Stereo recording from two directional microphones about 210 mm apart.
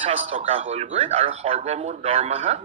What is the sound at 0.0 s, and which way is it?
A man's voice, 30° right (ahead or behind).